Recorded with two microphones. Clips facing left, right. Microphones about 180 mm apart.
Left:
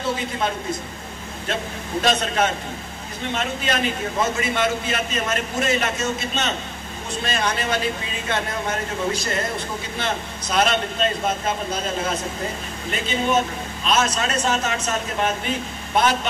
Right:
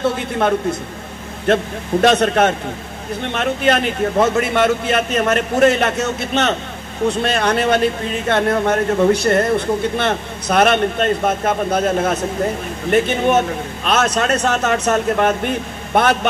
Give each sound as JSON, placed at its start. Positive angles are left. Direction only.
{"t": 0.0, "sound": "a man's voice", "side_deg": -60}